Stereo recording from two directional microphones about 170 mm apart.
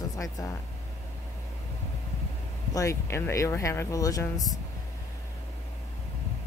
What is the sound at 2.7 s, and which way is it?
Speech, 20° left (ahead or behind).